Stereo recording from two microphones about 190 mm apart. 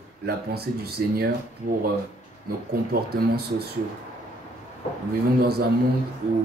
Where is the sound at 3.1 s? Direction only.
55° right (ahead or behind).